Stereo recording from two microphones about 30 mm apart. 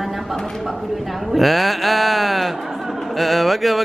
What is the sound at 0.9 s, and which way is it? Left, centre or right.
Mantra, centre.